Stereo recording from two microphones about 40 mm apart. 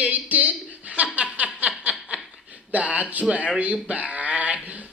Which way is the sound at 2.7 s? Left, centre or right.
Right.